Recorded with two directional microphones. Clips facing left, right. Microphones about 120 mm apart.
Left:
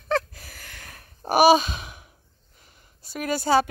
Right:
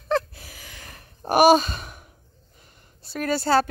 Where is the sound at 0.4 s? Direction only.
Centre (ahead or behind).